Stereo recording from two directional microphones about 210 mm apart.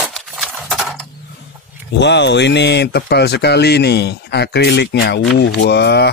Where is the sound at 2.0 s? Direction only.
55° left (ahead or behind).